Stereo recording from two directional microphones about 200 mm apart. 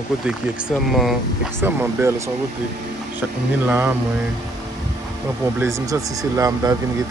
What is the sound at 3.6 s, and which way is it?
Speech, 10° right (ahead or behind).